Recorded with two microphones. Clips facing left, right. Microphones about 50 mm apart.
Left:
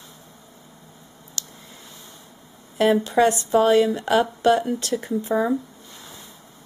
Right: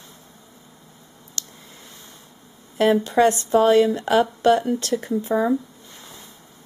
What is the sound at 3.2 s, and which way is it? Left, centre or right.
A woman's voice, centre.